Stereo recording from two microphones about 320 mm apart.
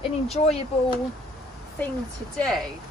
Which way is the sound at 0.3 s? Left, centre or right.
Centre.